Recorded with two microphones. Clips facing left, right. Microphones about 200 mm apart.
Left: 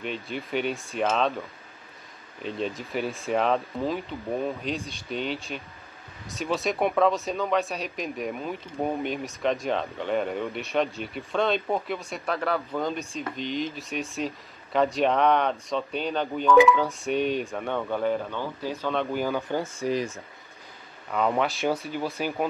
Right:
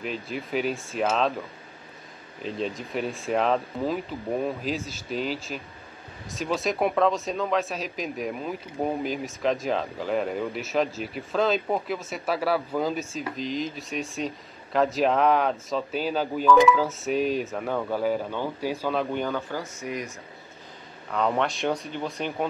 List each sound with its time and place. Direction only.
0.0 s speech: centre (ahead or behind)
2.4 s speech: centre (ahead or behind)
19.8 s speech: 30° left (ahead or behind)
21.1 s speech: 5° left (ahead or behind)